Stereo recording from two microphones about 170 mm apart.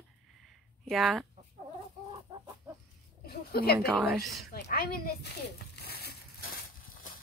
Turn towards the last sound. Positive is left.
turn(degrees=65)  # may be behind; listen again after turning